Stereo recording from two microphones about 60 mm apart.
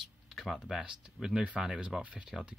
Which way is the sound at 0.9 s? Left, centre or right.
Centre.